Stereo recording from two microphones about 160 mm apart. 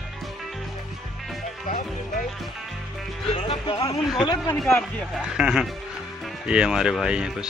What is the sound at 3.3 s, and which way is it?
Music, 35° left (ahead or behind).